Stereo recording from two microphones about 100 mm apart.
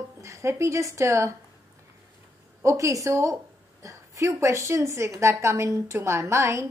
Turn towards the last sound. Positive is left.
turn(degrees=-25)  # may be behind; listen again after turning